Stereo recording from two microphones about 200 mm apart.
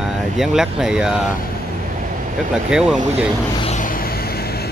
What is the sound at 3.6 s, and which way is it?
Vehicle, 35° left (ahead or behind).